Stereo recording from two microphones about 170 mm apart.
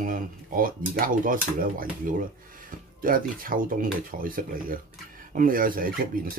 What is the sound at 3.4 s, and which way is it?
Speech, 55° right (ahead or behind).